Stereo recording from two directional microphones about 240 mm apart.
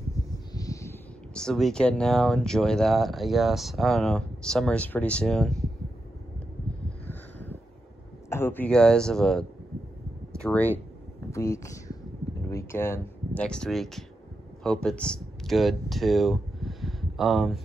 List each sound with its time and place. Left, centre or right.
0.5 s speech: centre
7.1 s a sound: centre
8.3 s speech: centre